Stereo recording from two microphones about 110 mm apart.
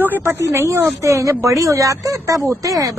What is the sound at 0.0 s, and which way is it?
Speech, 20° right (ahead or behind).